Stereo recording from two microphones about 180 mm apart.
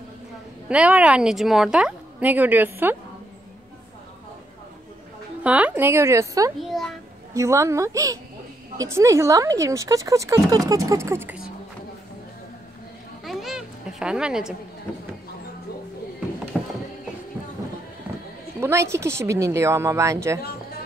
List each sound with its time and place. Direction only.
0.7 s speech: 5° right (ahead or behind)
5.4 s speech: 5° right (ahead or behind)
6.6 s a child's voice: centre (ahead or behind)
7.3 s speech: 15° right (ahead or behind)
13.2 s a sound: centre (ahead or behind)
16.5 s clip-clop: 5° left (ahead or behind)
18.6 s speech: 15° right (ahead or behind)